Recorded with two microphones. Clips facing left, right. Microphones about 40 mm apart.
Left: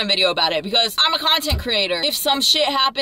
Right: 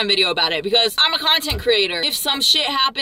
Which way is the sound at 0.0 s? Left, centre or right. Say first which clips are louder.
Even; centre.